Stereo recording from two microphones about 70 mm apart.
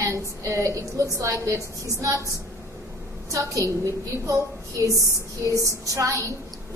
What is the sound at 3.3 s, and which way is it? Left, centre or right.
A woman's voice, right.